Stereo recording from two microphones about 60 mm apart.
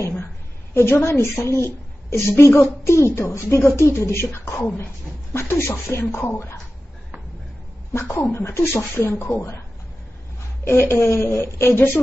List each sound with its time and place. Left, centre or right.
0.7 s a woman's voice: left
7.9 s a woman's voice: left
10.9 s a woman's voice: left